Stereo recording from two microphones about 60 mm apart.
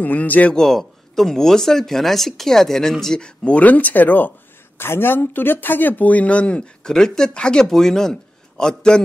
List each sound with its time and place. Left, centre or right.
0.0 s speech: left
0.6 s speech: centre
3.4 s speech: left
4.7 s a man's voice: left; by 9.0 s centre